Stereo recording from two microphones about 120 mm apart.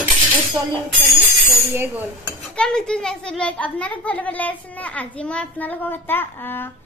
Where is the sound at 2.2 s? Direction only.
10° left (ahead or behind).